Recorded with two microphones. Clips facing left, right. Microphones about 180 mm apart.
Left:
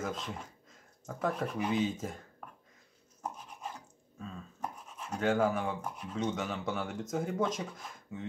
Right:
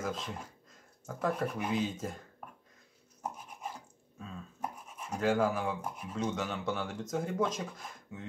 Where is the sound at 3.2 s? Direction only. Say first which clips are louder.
Even; 10° right (ahead or behind).